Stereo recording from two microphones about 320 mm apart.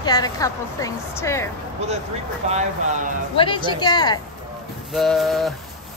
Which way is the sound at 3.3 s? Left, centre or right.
Centre.